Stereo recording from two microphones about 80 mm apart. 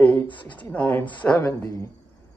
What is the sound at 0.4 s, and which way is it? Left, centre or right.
A man's voice, centre.